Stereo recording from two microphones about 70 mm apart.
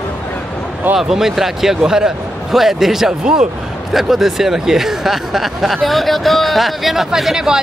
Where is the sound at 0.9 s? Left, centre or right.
Centre.